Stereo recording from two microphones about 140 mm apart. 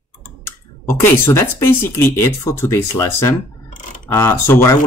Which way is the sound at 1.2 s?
20° left (ahead or behind).